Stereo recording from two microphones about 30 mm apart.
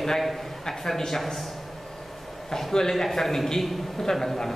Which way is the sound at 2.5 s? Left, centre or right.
Centre.